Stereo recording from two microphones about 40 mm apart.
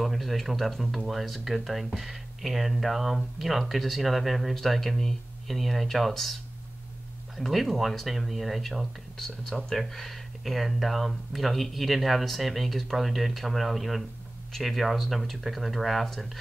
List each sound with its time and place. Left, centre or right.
0.0 s speech: centre
7.3 s speech: centre
9.1 s speech: centre